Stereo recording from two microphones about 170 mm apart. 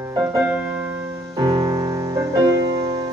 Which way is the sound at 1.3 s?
20° right (ahead or behind).